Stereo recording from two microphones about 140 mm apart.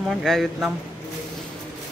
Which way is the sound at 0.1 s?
Centre (ahead or behind).